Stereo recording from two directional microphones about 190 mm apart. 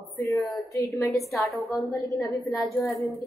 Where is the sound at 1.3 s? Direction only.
Centre (ahead or behind).